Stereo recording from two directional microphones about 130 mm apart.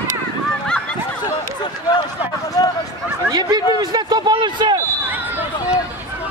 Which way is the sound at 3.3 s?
30° right (ahead or behind).